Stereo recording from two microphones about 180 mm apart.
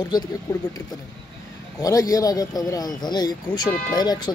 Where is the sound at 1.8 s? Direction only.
20° left (ahead or behind).